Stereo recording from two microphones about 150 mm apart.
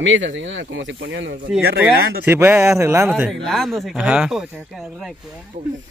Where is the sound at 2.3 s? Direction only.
15° right (ahead or behind).